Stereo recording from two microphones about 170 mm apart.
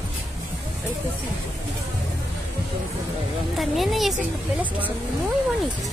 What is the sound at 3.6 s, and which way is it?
Speech, centre (ahead or behind).